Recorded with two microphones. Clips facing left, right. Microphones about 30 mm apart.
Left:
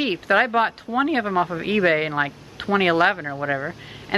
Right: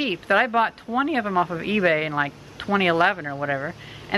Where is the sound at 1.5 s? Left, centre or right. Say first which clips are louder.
Left 1 dB; left.